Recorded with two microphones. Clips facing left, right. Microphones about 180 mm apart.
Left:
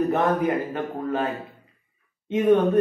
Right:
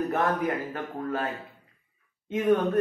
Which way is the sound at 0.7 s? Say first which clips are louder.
Left 5 dB; 20° left (ahead or behind).